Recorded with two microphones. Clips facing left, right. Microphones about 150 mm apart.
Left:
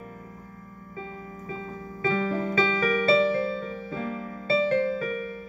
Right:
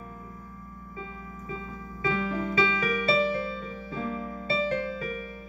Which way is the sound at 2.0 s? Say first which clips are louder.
Left 3 dB; 45° left (ahead or behind).